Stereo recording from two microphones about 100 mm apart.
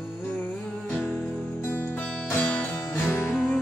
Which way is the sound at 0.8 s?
15° left (ahead or behind).